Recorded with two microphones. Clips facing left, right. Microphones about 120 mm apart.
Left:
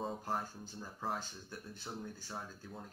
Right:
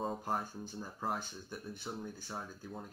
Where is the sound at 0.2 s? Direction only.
15° right (ahead or behind).